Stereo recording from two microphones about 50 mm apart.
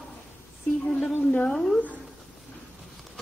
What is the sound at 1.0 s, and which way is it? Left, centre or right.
Speech, centre.